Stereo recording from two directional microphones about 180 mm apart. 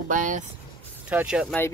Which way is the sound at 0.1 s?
45° right (ahead or behind).